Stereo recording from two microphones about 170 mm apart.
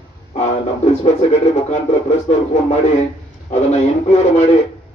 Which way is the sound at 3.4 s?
40° left (ahead or behind).